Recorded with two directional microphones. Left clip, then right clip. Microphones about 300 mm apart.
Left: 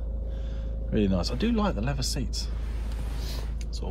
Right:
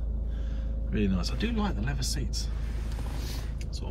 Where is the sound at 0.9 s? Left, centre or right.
Centre.